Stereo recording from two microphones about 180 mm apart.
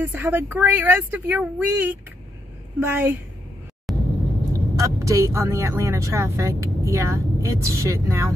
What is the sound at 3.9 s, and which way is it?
Vehicle, centre (ahead or behind).